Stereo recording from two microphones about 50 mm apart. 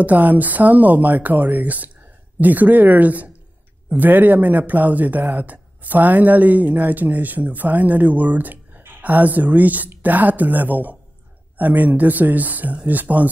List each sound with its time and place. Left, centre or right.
0.0 s speech: right